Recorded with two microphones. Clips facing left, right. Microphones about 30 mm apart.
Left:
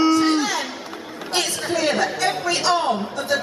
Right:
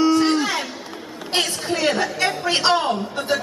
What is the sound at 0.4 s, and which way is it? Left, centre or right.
Music, right.